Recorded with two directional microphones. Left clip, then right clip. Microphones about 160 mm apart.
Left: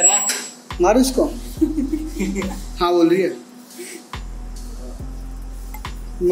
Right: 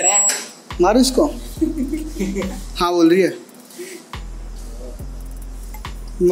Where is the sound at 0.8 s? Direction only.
45° right (ahead or behind).